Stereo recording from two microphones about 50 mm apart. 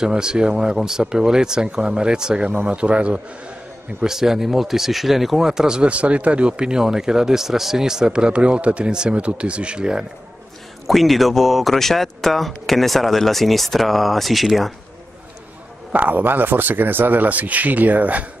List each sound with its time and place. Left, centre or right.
0.0 s a man's voice: centre
4.0 s speech: centre
10.9 s speech: centre
15.9 s speech: right